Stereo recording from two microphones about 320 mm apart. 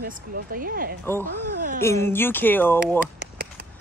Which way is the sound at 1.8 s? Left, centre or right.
Centre.